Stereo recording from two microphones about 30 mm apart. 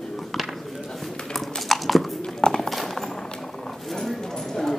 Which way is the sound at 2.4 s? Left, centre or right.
Centre.